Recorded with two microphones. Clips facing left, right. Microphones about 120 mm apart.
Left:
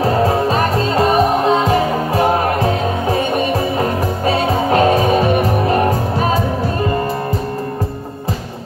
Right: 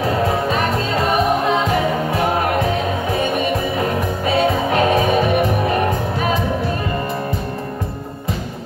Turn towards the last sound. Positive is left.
turn(degrees=35)  # may be behind; listen again after turning